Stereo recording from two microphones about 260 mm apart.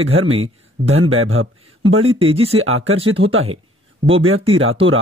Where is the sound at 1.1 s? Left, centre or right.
Right.